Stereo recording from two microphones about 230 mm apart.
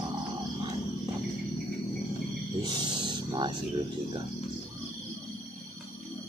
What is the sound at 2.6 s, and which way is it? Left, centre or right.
Music, centre.